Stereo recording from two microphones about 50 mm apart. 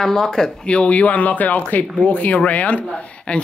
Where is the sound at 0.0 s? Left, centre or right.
Centre.